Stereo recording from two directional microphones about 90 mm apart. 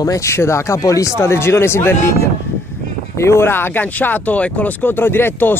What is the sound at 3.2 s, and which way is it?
Speech, 30° left (ahead or behind).